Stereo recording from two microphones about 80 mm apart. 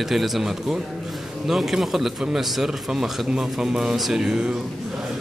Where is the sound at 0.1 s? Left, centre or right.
Centre.